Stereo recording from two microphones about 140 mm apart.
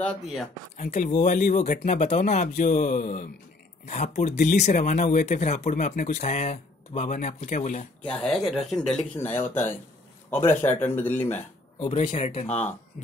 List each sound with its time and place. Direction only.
0.7 s speech: 60° left (ahead or behind)
3.8 s speech: 55° left (ahead or behind)
8.0 s speech: 5° left (ahead or behind)
9.2 s speech: 15° left (ahead or behind)
11.8 s speech: 35° left (ahead or behind)
12.1 s speech: 55° left (ahead or behind)